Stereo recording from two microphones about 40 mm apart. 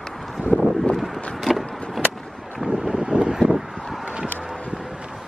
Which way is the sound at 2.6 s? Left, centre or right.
Centre.